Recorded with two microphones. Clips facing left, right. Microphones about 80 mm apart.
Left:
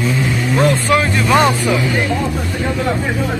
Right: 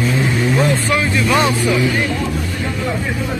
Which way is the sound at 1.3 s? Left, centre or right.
Left.